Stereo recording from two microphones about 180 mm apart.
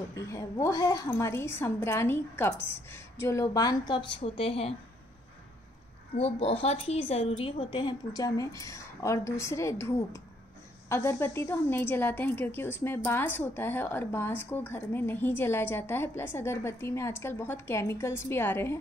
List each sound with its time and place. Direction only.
0.1 s a woman's voice: 15° left (ahead or behind)
6.1 s a woman's voice: 35° left (ahead or behind); by 18.8 s 10° left (ahead or behind)